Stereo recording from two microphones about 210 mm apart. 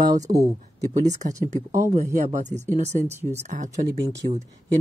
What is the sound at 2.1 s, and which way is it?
A man's voice, 35° right (ahead or behind).